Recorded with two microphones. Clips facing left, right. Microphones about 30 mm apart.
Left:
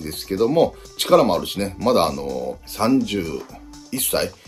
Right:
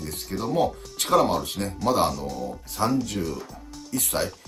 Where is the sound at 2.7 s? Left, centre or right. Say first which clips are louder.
Left 6 dB; left.